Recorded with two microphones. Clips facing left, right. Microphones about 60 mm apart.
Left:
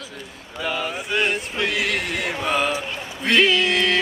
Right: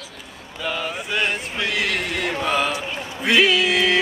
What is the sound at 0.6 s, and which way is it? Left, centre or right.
Speech, centre.